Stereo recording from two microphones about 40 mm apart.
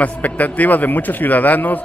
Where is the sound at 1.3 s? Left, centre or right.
Left.